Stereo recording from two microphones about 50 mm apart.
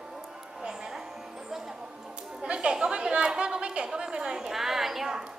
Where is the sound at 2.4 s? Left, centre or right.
Centre.